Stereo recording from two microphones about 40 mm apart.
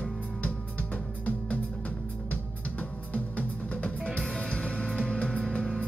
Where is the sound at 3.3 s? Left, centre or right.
Left.